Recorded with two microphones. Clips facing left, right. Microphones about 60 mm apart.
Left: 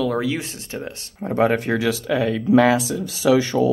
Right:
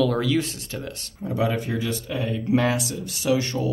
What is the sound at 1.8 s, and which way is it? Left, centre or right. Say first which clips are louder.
Speech: left 7 dB; left.